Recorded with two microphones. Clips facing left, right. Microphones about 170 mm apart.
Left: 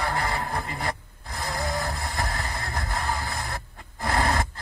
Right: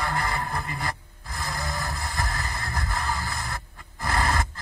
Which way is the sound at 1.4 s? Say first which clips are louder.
Left 3 dB; 25° left (ahead or behind).